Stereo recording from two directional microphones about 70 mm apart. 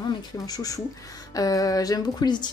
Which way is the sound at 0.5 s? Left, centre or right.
Left.